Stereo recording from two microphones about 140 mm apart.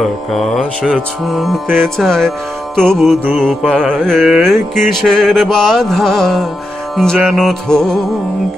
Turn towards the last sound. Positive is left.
turn(degrees=5)  # may be behind; listen again after turning